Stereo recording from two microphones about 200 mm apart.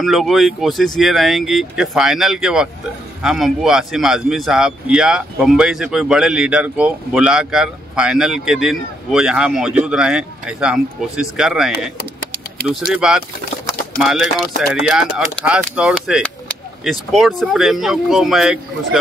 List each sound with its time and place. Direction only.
0.0 s a man's voice: centre (ahead or behind)